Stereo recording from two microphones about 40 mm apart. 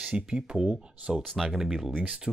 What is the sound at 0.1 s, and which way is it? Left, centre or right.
Speech, centre.